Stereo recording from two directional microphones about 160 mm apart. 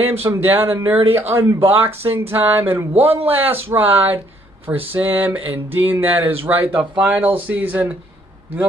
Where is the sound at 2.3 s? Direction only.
15° right (ahead or behind).